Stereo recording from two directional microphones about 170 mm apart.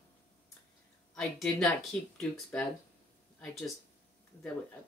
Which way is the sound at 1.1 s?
5° left (ahead or behind).